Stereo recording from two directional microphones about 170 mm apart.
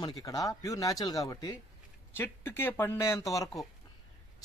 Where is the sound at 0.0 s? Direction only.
20° left (ahead or behind).